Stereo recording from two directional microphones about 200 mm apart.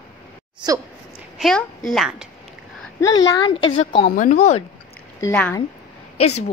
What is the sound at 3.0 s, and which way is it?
Speech, 20° left (ahead or behind).